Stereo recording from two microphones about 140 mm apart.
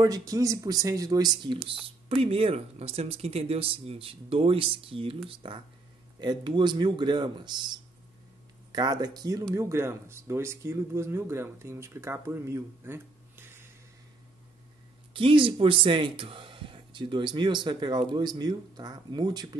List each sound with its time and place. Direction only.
0.0 s speech: 25° right (ahead or behind)
1.7 s speech: 45° right (ahead or behind); by 13.7 s 15° right (ahead or behind)
15.1 s speech: 40° right (ahead or behind)